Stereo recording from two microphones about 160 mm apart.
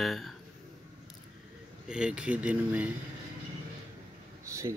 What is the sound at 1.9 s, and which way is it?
Speech, 5° right (ahead or behind).